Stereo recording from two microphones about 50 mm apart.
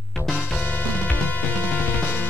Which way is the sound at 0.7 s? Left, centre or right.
Left.